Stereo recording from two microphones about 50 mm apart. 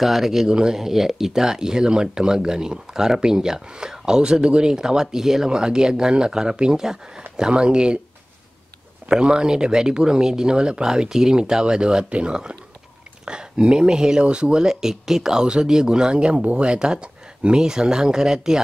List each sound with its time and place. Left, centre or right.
0.0 s speech: centre
9.1 s speech: centre